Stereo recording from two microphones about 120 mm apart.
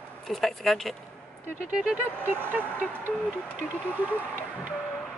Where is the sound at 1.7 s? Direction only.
10° right (ahead or behind).